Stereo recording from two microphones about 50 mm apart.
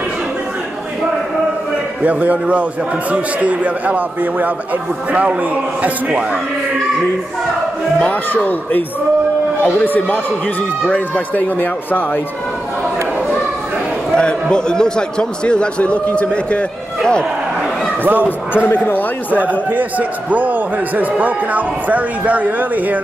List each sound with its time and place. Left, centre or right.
2.0 s a man's voice: right
5.8 s a man's voice: right
8.0 s speech: left
9.8 s speech: left
14.1 s speech: centre
18.0 s a man's voice: right
18.9 s speech: left
19.7 s a man's voice: right